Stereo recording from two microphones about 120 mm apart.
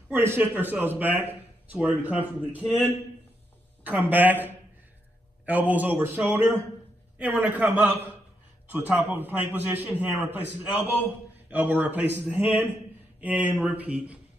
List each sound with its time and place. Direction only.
0.1 s a man's voice: 20° right (ahead or behind)
3.8 s a man's voice: 15° right (ahead or behind)